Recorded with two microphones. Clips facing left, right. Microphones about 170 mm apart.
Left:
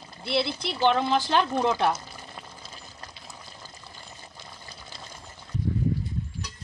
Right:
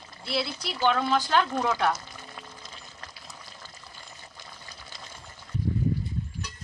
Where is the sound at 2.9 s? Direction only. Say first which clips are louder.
Left 1 dB; 25° left (ahead or behind).